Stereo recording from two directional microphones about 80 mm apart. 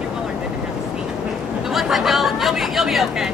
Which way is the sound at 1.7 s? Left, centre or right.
Centre.